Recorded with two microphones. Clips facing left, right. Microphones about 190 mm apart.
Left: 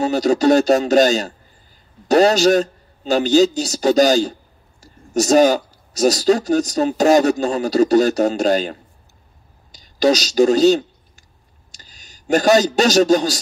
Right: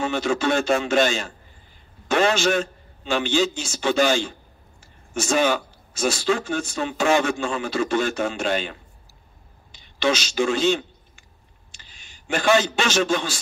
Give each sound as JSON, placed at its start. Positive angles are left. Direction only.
{"t": 0.0, "sound": "a man's voice", "side_deg": 40}